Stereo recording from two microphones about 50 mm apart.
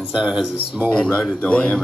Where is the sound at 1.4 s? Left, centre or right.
Left.